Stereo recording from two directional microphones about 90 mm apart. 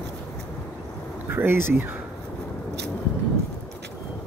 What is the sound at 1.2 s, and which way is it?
Speech, 25° right (ahead or behind).